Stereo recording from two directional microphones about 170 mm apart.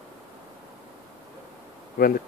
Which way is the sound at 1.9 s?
60° left (ahead or behind).